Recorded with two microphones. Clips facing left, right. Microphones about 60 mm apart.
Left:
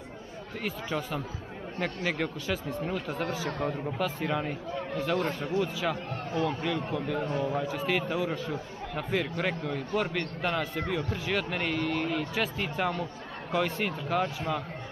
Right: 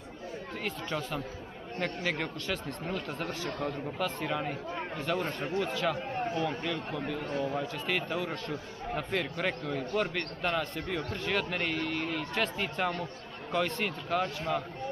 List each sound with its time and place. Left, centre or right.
0.7 s speech: centre; by 3.8 s left
4.0 s a man's voice: centre
7.6 s speech: centre
11.3 s speech: centre